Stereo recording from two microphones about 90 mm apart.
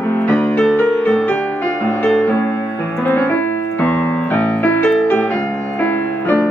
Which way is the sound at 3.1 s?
25° left (ahead or behind).